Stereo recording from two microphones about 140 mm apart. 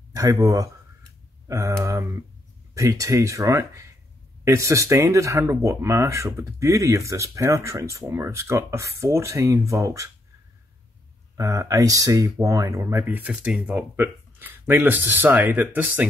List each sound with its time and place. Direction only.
0.1 s speech: 25° right (ahead or behind)
11.3 s speech: 20° right (ahead or behind)